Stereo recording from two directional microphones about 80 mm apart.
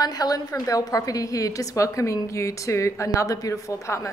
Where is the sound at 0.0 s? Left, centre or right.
Left.